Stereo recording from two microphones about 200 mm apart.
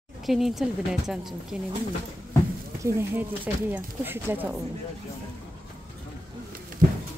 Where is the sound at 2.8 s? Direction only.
10° right (ahead or behind).